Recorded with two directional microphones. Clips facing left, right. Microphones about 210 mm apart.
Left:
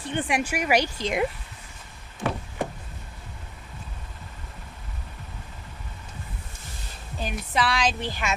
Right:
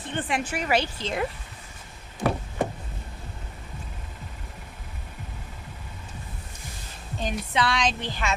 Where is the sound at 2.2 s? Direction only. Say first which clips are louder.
Right 3 dB; 40° right (ahead or behind).